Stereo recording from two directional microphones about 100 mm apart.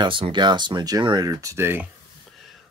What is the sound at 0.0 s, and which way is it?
Speech, 55° right (ahead or behind).